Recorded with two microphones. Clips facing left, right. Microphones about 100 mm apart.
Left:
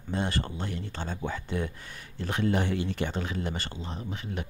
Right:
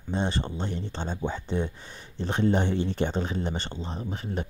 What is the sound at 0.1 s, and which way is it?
Speech, 20° right (ahead or behind).